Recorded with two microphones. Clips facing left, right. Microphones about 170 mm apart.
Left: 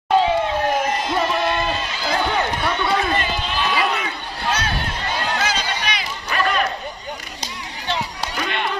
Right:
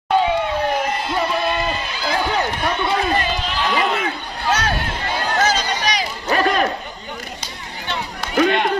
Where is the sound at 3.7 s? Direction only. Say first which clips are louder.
Right 2 dB; 50° right (ahead or behind).